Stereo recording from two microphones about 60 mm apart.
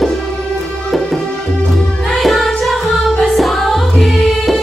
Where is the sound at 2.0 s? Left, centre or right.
Centre.